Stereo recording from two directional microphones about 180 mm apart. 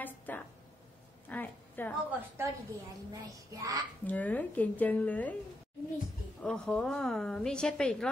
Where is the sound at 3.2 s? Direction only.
20° right (ahead or behind).